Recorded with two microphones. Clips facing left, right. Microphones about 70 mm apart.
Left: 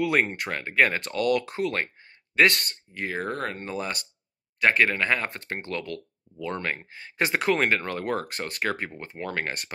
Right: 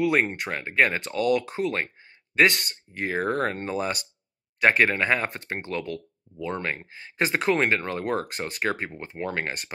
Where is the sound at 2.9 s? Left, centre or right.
Right.